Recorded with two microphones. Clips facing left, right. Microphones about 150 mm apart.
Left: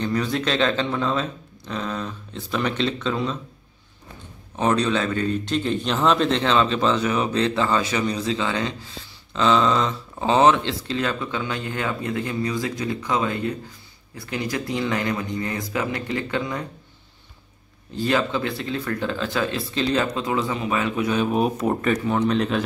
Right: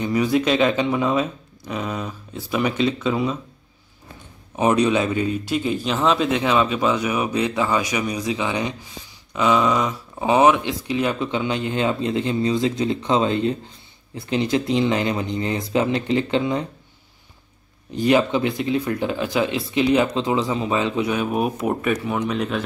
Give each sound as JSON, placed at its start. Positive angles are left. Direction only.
{"t": 0.0, "sound": "a man's voice", "side_deg": -10}
{"t": 4.6, "sound": "a man's voice", "side_deg": -15}
{"t": 17.9, "sound": "a man's voice", "side_deg": -15}
{"t": 21.1, "sound": "a man's voice", "side_deg": -10}